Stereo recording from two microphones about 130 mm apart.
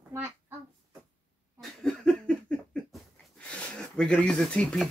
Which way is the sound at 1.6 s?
5° left (ahead or behind).